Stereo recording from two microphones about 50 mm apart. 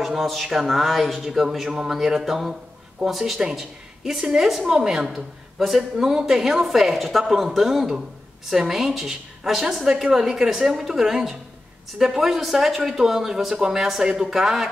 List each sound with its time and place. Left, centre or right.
0.0 s a woman's voice: centre
4.5 s a woman's voice: centre